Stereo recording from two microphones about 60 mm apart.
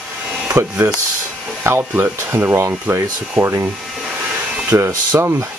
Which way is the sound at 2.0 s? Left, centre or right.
Right.